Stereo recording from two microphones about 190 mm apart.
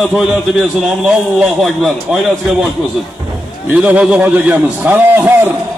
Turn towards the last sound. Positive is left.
turn(degrees=-10)  # may be behind; listen again after turning